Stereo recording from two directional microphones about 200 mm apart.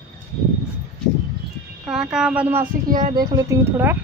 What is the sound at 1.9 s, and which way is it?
Speech, 5° right (ahead or behind).